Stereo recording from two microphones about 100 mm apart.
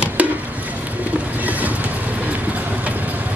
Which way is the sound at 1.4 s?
15° right (ahead or behind).